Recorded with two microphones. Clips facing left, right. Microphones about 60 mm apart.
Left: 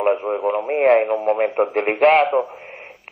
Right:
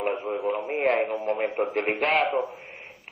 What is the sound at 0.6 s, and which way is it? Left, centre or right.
A man's voice, left.